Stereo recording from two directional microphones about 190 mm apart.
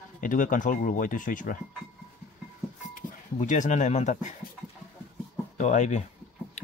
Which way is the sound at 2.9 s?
45° left (ahead or behind).